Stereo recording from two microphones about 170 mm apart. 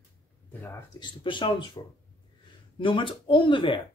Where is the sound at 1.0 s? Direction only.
30° left (ahead or behind).